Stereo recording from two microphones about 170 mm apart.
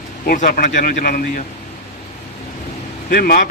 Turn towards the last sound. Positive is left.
turn(degrees=60)  # may be behind; listen again after turning